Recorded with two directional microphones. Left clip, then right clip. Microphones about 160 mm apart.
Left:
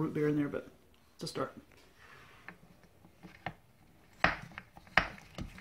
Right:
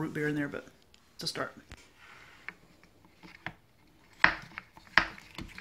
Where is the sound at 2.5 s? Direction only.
30° left (ahead or behind).